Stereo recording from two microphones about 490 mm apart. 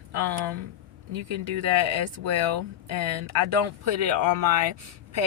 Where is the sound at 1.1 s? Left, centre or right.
Right.